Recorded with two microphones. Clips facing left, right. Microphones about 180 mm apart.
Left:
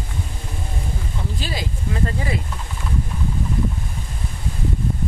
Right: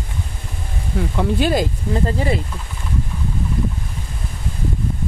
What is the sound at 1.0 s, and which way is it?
Speech, 70° right (ahead or behind).